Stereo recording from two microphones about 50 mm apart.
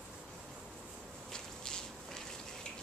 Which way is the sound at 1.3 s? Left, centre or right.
Centre.